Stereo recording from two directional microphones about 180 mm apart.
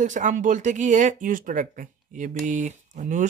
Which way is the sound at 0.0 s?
45° right (ahead or behind).